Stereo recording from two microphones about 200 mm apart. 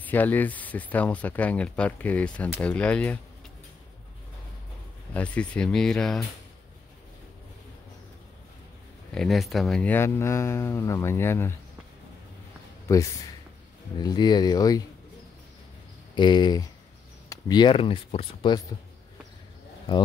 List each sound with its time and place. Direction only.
0.0 s speech: 10° left (ahead or behind)
5.1 s speech: 5° left (ahead or behind)
9.1 s speech: centre (ahead or behind)
12.8 s speech: 15° left (ahead or behind)
16.2 s speech: 20° left (ahead or behind)